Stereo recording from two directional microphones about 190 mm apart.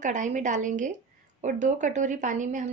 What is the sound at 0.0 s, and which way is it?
Speech, 40° right (ahead or behind).